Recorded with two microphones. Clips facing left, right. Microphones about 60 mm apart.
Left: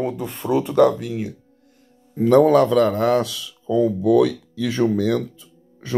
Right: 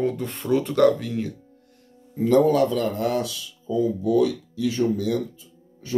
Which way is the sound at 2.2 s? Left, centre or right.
Left.